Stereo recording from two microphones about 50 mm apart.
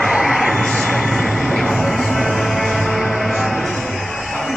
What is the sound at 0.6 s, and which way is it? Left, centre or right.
Music, centre.